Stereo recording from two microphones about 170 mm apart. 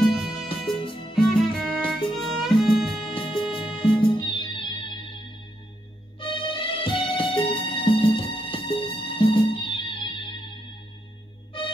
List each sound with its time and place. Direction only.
0.0 s music: centre (ahead or behind)
1.1 s violin: centre (ahead or behind)
3.0 s music: 30° left (ahead or behind)
6.1 s music: 30° left (ahead or behind)